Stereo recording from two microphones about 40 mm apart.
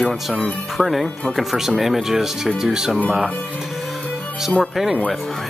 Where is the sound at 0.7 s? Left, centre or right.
Centre.